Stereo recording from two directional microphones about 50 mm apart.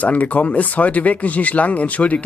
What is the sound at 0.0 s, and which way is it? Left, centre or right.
A man's voice, left.